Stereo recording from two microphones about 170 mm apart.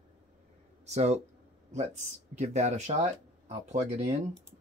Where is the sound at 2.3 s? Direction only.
40° right (ahead or behind).